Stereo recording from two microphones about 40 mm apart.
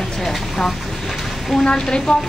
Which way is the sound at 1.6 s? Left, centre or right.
Left.